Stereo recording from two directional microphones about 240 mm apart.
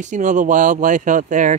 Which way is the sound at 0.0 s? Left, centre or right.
Right.